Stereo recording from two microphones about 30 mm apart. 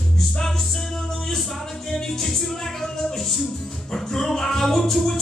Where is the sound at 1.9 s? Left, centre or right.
Centre.